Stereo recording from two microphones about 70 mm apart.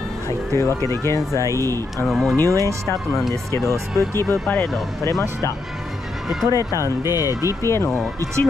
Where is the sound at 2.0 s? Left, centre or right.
Centre.